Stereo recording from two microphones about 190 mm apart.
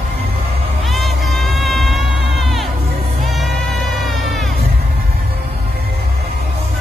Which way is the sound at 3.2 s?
Centre (ahead or behind).